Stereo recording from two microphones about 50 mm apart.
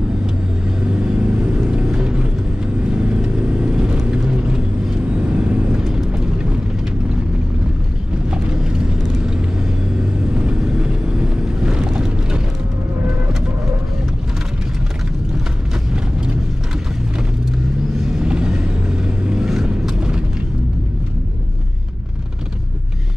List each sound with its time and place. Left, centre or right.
0.7 s vehicle: centre
8.3 s vehicle: centre
10.3 s vehicle: centre
18.0 s vehicle: centre